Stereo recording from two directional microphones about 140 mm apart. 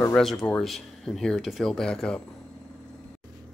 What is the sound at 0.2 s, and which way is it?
Speech, centre (ahead or behind).